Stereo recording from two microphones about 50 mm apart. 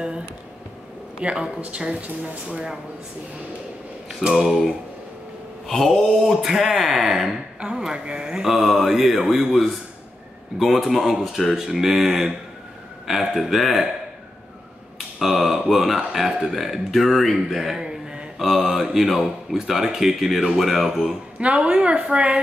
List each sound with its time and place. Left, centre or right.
1.2 s mantra: right
4.3 s mantra: centre
5.7 s speech: centre
7.6 s mantra: centre
10.6 s speech: centre
15.1 s speech: centre
18.4 s speech: centre
21.4 s a woman's voice: right